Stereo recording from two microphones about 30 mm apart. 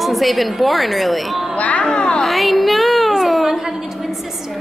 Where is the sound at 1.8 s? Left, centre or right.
Left.